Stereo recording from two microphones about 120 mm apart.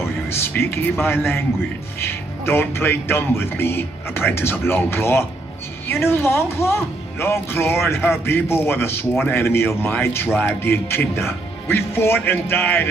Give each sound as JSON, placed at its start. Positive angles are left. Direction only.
{"t": 0.0, "sound": "speech", "side_deg": 20}